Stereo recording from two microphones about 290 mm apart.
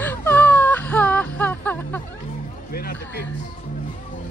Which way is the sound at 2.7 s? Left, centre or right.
Left.